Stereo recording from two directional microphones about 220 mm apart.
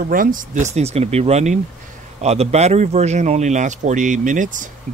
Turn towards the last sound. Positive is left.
turn(degrees=-35)  # may be behind; listen again after turning